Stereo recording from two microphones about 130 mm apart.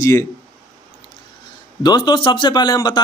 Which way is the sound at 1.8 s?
35° left (ahead or behind).